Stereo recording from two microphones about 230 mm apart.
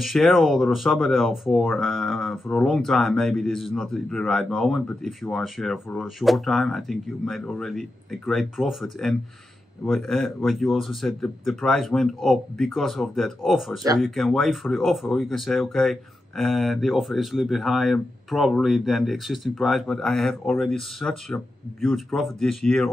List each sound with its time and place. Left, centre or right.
0.0 s speech: centre